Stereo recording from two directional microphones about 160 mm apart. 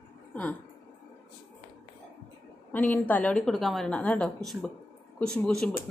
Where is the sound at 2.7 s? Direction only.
10° left (ahead or behind).